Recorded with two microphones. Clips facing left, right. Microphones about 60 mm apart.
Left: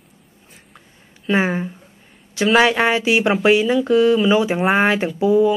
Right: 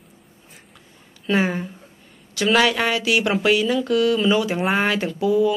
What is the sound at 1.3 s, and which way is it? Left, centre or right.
Speech, centre.